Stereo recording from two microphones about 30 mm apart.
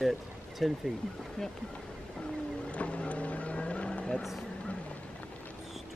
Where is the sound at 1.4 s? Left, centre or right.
Left.